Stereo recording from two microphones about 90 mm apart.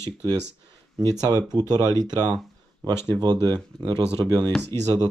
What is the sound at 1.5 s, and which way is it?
Speech, 50° right (ahead or behind).